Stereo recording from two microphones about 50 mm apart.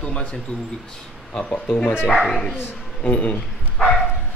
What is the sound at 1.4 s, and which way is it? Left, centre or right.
Speech, left.